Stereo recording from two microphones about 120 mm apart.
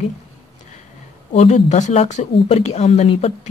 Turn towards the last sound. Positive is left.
turn(degrees=60)  # may be behind; listen again after turning